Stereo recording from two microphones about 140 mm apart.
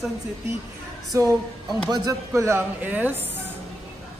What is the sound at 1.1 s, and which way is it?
Speech, 20° right (ahead or behind).